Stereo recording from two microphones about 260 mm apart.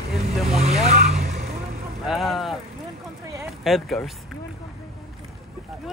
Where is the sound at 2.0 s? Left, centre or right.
Centre.